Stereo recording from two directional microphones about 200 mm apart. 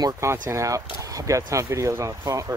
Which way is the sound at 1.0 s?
15° right (ahead or behind).